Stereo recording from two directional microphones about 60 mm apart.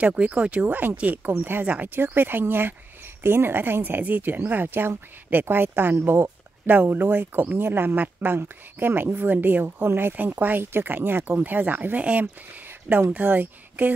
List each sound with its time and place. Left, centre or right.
0.0 s a woman's voice: right